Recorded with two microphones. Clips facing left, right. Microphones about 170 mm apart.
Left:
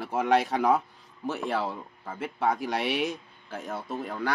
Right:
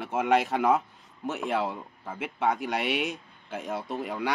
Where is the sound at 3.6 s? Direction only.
25° right (ahead or behind).